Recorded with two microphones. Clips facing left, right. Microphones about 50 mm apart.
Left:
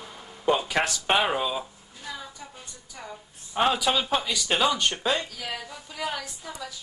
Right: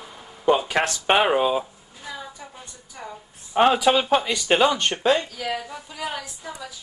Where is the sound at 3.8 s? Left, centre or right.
Right.